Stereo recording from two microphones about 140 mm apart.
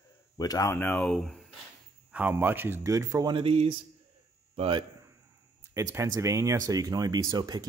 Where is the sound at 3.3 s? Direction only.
40° right (ahead or behind).